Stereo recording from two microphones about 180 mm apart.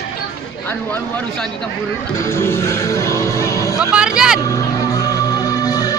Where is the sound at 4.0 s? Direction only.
5° right (ahead or behind).